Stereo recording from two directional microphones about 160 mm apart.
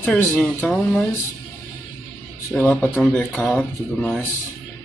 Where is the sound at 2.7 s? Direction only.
5° left (ahead or behind).